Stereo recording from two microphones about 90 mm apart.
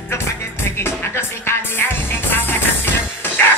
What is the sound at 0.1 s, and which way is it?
Music, 30° left (ahead or behind).